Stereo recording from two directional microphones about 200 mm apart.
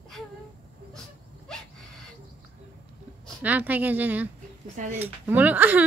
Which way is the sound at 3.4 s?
10° right (ahead or behind).